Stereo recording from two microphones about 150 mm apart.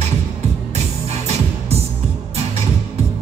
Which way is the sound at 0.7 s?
45° right (ahead or behind).